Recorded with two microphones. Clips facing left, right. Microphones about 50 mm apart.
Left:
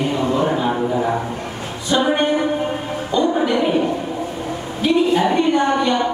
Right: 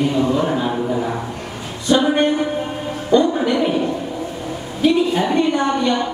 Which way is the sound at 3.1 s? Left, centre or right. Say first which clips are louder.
Right 4 dB; centre.